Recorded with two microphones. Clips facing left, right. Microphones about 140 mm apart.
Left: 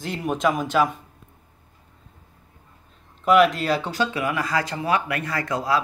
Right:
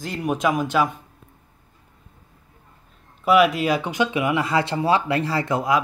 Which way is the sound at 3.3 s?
5° right (ahead or behind).